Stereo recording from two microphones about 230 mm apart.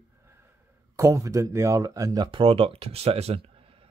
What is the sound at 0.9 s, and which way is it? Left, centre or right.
Speech, centre.